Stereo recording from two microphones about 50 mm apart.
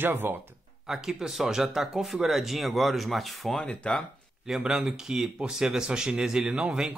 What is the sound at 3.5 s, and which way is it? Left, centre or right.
Speech, centre.